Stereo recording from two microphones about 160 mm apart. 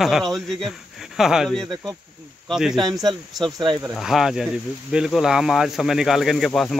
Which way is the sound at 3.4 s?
30° right (ahead or behind).